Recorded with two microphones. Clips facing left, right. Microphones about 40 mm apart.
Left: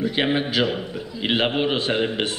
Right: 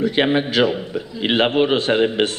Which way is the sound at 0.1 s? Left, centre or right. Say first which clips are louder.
Right 4 dB; centre.